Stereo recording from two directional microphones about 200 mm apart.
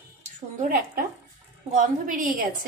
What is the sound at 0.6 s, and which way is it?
Speech, 45° right (ahead or behind).